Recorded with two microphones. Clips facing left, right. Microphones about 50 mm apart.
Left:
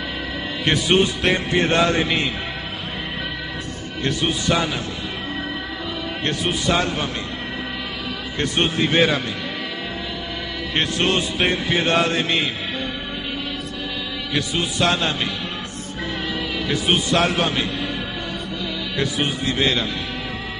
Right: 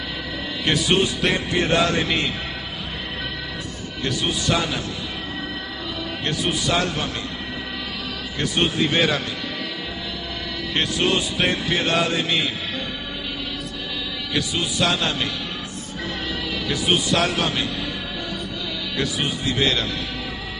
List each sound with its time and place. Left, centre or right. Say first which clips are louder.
0.8 s music: left 3 dB; centre
1.8 s a man's voice: left 2 dB; centre
4.2 s a man's voice: left 1 dB; centre
6.4 s a man's voice: left 1 dB; centre
8.4 s a man's voice: left 1 dB; centre
10.8 s music: left 1 dB; left
14.3 s a man's voice: left 1 dB; centre
17.1 s a man's voice: left 2 dB; centre
18.9 s a man's voice: left 2 dB; centre